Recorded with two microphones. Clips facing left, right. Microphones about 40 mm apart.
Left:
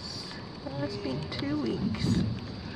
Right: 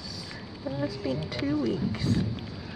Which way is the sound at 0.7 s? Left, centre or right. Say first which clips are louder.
Right 4 dB; right.